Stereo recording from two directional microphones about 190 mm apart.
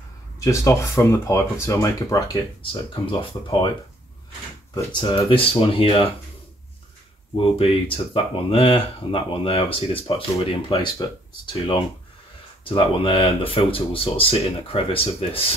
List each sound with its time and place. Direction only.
0.4 s speech: 15° left (ahead or behind)
5.0 s speech: 25° left (ahead or behind)
7.3 s speech: 30° left (ahead or behind)